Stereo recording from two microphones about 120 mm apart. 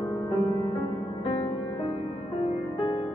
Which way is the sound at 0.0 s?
40° left (ahead or behind).